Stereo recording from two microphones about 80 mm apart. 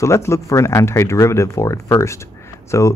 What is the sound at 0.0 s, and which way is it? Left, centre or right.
Speech, left.